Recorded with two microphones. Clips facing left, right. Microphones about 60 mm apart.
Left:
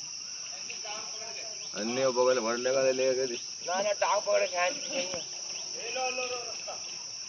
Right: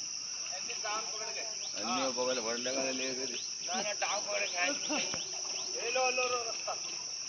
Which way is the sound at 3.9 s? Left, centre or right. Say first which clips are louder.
Left 9 dB; left.